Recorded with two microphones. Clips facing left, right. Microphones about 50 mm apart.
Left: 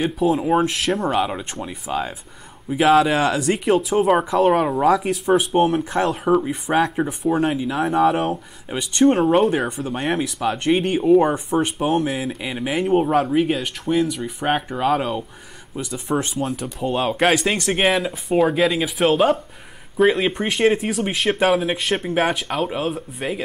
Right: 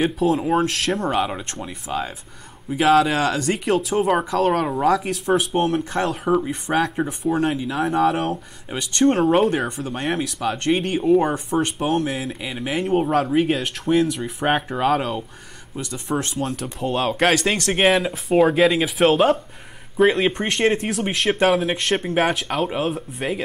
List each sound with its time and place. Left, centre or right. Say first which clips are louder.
0.2 s speech: left 4 dB; centre
3.2 s speech: left 2 dB; centre
3.4 s speech: left 2 dB; centre
15.7 s speech: left 2 dB; centre